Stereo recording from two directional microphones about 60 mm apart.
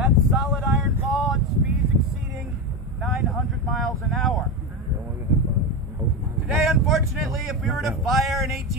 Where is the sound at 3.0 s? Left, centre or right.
Centre.